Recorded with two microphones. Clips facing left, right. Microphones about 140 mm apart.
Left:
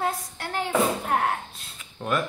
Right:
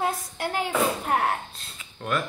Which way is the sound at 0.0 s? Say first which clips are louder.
Right 1 dB; 10° right (ahead or behind).